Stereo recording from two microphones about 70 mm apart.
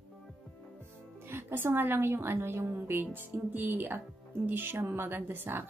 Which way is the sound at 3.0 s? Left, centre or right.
Right.